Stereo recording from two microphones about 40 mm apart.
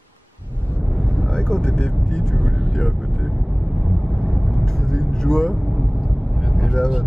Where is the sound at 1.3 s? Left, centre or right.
Centre.